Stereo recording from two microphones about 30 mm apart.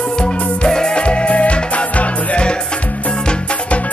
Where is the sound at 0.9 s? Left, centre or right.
Left.